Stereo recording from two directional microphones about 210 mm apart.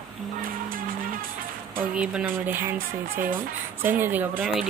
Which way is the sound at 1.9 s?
5° right (ahead or behind).